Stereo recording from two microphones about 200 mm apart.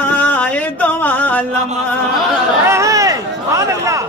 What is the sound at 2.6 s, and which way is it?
Speech, 15° right (ahead or behind).